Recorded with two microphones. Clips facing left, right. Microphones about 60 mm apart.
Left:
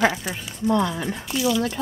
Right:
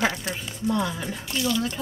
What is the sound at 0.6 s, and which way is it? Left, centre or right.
Speech, left.